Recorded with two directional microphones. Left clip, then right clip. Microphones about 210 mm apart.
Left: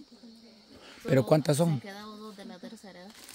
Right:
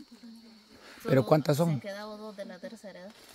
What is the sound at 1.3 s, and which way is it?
Speech, 10° left (ahead or behind).